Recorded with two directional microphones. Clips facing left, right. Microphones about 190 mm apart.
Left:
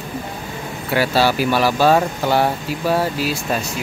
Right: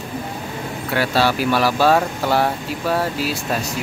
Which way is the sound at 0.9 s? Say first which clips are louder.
Left 2 dB; 5° left (ahead or behind).